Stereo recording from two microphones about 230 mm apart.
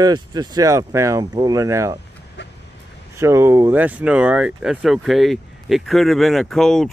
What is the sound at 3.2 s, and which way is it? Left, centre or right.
Speech, centre.